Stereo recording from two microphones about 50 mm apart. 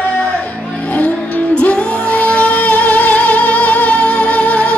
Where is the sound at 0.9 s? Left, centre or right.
Left.